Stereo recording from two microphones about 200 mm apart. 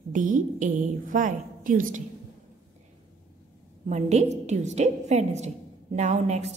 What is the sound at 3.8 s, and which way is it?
A woman's voice, 35° right (ahead or behind).